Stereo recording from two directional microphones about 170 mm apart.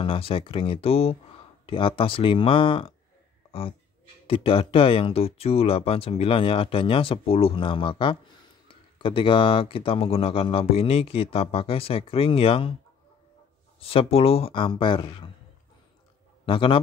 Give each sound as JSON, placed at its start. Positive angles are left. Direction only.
{"t": 0.0, "sound": "speech", "side_deg": 30}
{"t": 4.3, "sound": "speech", "side_deg": 30}
{"t": 13.7, "sound": "speech", "side_deg": 35}
{"t": 16.4, "sound": "speech", "side_deg": 30}